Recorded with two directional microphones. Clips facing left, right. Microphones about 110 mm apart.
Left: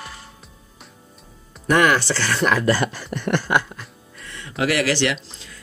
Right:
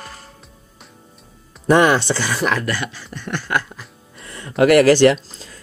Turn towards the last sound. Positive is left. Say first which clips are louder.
# right 3 dB
turn(degrees=-35)  # may be behind; listen again after turning